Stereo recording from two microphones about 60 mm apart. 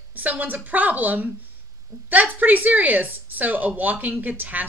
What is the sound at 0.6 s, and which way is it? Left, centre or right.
Speech, right.